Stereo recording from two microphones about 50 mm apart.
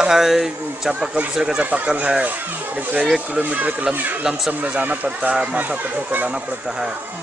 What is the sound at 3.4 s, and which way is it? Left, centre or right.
Speech, right.